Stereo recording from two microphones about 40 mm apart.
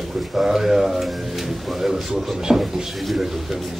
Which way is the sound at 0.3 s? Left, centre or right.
Centre.